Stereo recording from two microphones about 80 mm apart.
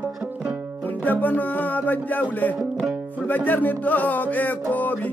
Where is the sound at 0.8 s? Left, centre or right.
Left.